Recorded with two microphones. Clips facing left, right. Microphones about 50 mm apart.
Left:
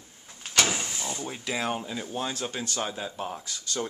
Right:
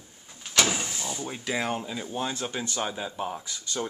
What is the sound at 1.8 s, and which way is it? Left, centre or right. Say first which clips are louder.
Speech: right 1 dB; centre.